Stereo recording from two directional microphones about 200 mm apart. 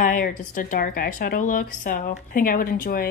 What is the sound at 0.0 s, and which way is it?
Speech, 45° left (ahead or behind).